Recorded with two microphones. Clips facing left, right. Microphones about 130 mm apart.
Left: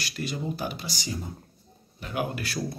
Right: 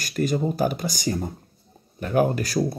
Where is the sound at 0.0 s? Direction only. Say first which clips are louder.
Right 9 dB; 45° right (ahead or behind).